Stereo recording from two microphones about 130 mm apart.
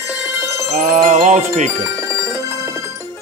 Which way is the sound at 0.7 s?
65° right (ahead or behind).